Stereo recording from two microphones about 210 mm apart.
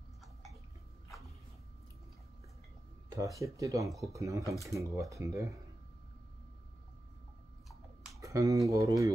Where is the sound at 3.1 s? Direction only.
15° right (ahead or behind).